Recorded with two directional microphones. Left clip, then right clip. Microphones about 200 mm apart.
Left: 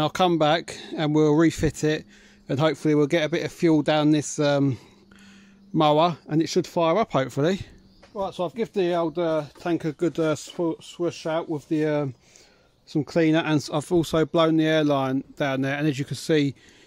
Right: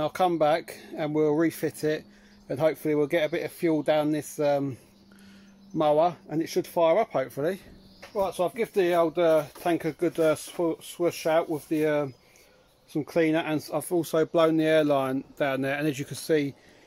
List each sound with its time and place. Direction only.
0.0 s speech: 45° left (ahead or behind)
8.1 s speech: 45° left (ahead or behind)